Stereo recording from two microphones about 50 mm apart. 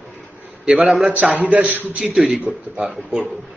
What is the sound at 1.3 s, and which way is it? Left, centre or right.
Speech, right.